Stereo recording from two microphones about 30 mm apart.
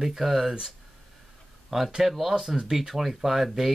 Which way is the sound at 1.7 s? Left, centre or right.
Centre.